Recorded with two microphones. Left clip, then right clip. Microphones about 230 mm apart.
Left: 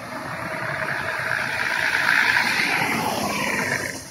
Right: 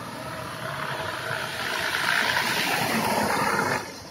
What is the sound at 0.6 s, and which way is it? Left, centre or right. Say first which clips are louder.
Vehicle: left 4 dB; right.